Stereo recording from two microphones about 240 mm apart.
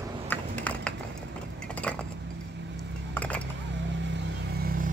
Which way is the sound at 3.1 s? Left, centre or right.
Centre.